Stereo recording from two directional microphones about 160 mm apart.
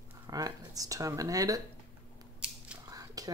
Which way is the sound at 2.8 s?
25° right (ahead or behind).